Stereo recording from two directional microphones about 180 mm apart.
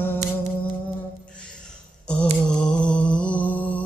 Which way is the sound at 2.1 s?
5° left (ahead or behind).